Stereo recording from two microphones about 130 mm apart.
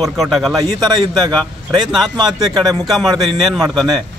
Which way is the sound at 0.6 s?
30° right (ahead or behind).